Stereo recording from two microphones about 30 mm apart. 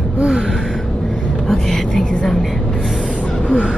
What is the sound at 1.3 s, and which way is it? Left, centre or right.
Speech, centre.